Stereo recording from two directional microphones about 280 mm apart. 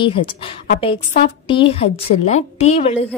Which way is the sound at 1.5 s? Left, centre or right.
Centre.